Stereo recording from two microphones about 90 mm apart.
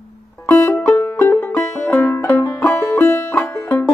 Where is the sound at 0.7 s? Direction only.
20° left (ahead or behind).